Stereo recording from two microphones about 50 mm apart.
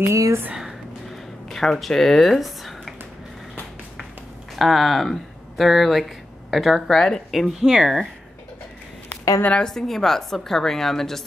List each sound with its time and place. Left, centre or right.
1.5 s speech: centre
4.6 s a woman's voice: centre
9.1 s a sound: left
9.6 s a woman's voice: centre